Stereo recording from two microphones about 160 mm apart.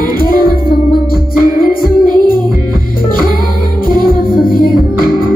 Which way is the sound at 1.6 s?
60° left (ahead or behind).